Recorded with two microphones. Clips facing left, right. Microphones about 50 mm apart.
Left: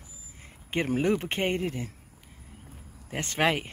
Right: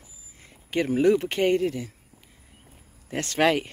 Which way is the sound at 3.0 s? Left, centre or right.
Centre.